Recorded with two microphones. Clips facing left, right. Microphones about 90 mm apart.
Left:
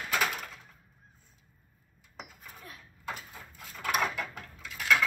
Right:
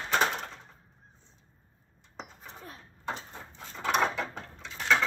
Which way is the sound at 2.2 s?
30° right (ahead or behind).